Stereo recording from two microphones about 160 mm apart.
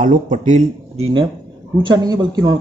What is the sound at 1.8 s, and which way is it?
Speech, 30° right (ahead or behind).